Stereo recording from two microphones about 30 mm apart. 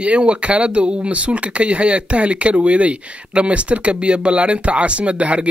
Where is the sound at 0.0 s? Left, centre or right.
Right.